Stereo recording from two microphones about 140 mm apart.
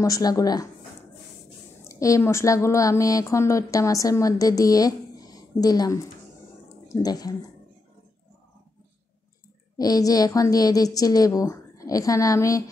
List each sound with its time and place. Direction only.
0.0 s a woman's voice: 25° left (ahead or behind)
1.9 s a woman's voice: 25° left (ahead or behind)
9.8 s a woman's voice: 25° left (ahead or behind)